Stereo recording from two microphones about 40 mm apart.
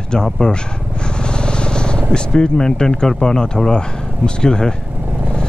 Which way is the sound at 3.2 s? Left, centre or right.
Centre.